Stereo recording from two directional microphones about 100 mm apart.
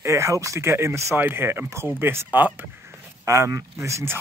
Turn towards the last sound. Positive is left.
turn(degrees=-30)  # may be behind; listen again after turning